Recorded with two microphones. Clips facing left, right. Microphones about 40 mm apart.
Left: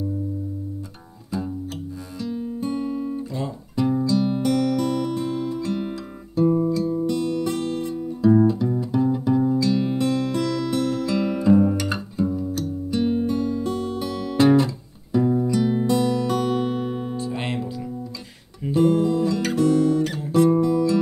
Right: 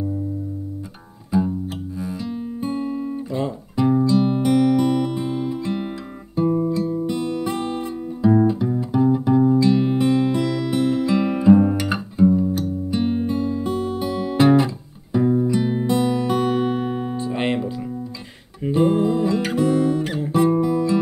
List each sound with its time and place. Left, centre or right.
1.3 s music: centre
2.0 s guitar: centre
7.1 s music: right
18.7 s guitar: centre